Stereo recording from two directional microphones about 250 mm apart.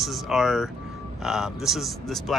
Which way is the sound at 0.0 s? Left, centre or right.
Centre.